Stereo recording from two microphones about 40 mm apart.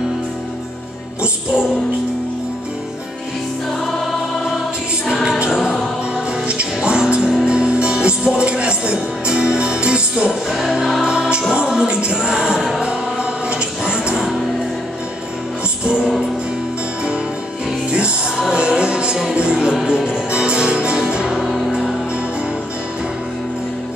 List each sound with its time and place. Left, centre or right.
3.8 s choir: centre
6.1 s music: right
7.2 s music: centre
7.4 s music: right
11.1 s music: right
12.8 s music: right
17.9 s music: right
21.4 s music: centre